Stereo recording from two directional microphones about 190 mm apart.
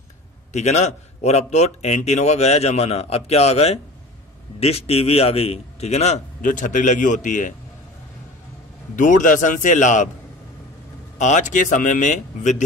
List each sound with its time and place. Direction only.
0.5 s a man's voice: 35° left (ahead or behind)
8.9 s a man's voice: 45° left (ahead or behind)
11.1 s a man's voice: 40° left (ahead or behind)